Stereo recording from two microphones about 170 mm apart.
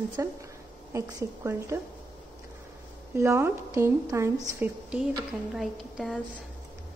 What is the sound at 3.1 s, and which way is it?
A woman's voice, 15° right (ahead or behind).